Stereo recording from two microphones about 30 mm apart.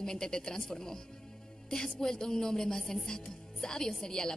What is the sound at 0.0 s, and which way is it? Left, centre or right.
Speech, left.